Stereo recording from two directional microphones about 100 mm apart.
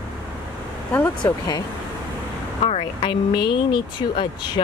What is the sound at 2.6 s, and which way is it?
Speech, 70° left (ahead or behind).